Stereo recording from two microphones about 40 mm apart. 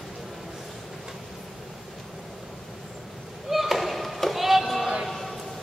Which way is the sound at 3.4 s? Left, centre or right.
Centre.